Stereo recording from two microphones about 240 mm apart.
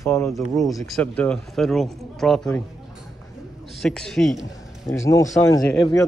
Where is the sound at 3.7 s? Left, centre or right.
Centre.